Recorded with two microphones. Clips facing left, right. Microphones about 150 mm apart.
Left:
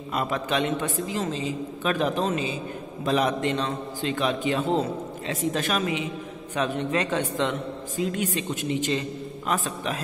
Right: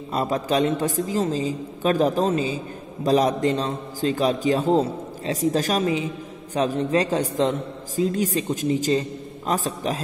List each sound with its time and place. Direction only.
0.1 s a man's voice: 35° right (ahead or behind)